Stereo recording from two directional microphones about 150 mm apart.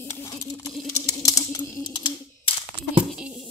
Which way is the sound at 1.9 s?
35° left (ahead or behind).